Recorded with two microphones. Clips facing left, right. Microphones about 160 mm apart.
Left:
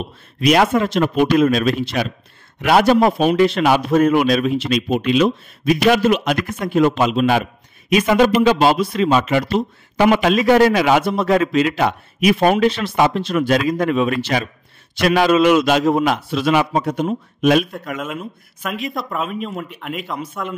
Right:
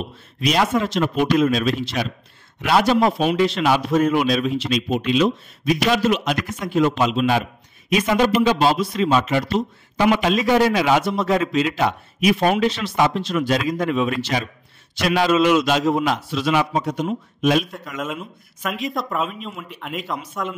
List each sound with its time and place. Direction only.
0.4 s speech: 60° left (ahead or behind)
17.9 s speech: centre (ahead or behind)